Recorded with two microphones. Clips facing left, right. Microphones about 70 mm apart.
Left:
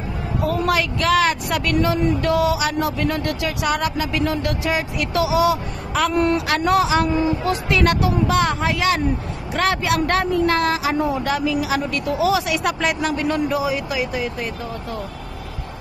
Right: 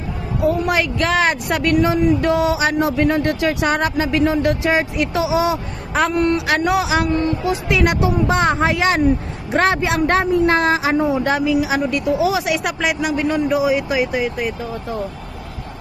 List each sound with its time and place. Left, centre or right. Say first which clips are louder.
0.7 s speech: even; right
6.1 s speech: right 2 dB; centre
7.1 s speech: right 1 dB; centre
7.4 s speech: right 1 dB; centre
12.6 s speech: right 1 dB; centre
13.5 s speech: right 5 dB; right